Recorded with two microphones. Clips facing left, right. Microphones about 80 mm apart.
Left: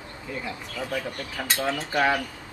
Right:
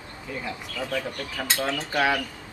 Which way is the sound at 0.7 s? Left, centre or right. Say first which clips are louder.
Right 1 dB; left.